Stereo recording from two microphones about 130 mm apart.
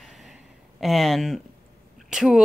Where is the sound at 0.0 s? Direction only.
Centre (ahead or behind).